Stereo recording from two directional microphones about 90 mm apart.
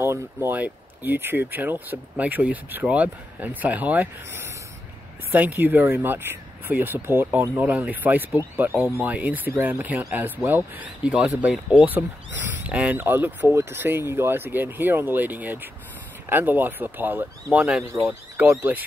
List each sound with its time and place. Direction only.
0.0 s speech: 25° right (ahead or behind)